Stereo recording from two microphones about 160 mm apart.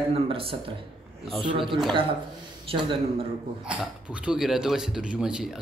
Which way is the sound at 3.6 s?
5° right (ahead or behind).